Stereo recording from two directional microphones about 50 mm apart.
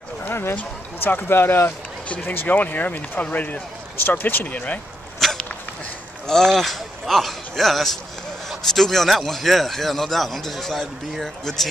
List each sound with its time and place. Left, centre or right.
0.2 s speech: left
2.5 s speech: left
5.2 s dog: centre
6.2 s a man's voice: centre